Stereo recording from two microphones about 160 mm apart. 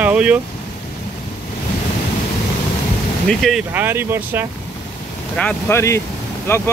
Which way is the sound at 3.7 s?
10° right (ahead or behind).